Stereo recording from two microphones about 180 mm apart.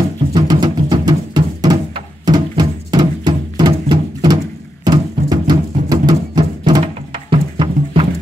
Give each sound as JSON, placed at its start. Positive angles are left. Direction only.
{"t": 0.3, "sound": "music", "side_deg": -20}